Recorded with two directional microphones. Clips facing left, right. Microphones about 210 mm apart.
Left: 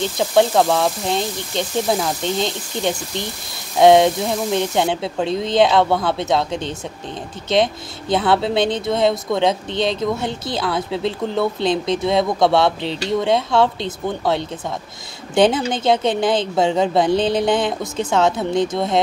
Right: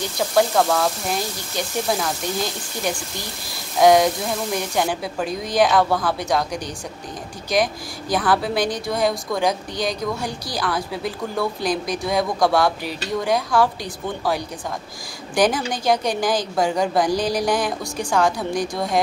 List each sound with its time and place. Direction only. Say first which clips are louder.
0.0 s speech: left 3 dB; 20° left (ahead or behind)